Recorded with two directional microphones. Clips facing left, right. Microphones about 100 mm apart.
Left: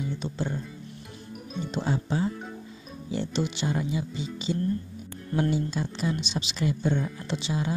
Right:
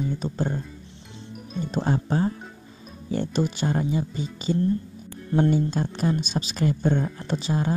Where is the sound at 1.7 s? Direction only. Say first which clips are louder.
Right 4 dB; 45° right (ahead or behind).